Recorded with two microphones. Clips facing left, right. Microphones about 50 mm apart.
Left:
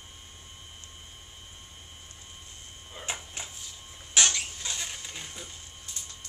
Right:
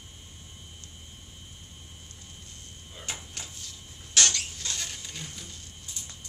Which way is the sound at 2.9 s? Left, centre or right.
Centre.